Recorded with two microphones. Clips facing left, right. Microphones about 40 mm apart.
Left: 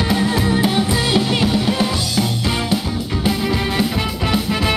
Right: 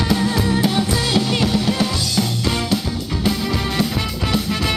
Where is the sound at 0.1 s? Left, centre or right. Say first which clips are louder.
Left 1 dB; left.